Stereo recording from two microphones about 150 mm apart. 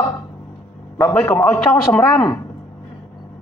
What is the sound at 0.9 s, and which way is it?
A man's voice, 15° left (ahead or behind).